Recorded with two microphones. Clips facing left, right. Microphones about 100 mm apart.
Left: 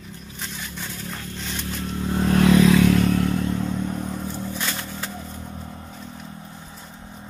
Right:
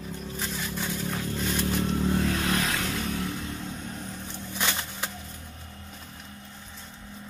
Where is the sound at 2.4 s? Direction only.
90° left.